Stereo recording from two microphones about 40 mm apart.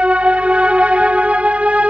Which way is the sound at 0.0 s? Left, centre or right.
Right.